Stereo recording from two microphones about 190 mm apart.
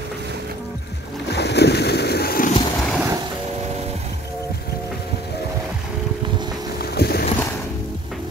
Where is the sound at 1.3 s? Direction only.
60° left (ahead or behind).